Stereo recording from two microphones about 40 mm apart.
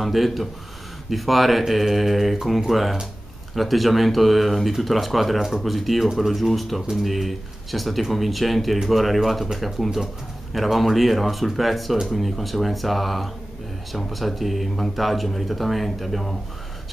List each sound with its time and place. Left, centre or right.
0.0 s speech: centre